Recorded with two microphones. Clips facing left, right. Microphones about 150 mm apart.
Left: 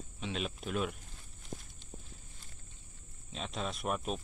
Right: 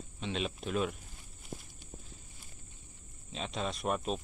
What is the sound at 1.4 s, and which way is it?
Walk, 10° right (ahead or behind).